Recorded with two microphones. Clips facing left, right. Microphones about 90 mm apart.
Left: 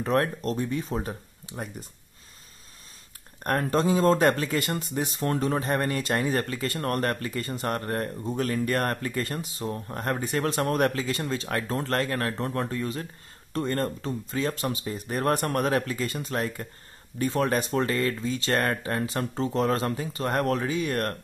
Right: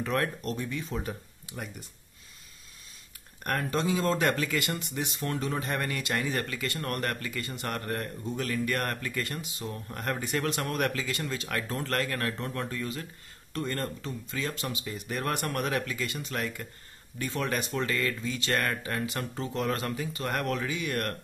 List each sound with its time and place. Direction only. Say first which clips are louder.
0.0 s speech: left 5 dB; 35° left (ahead or behind)
3.4 s speech: left 5 dB; 40° left (ahead or behind)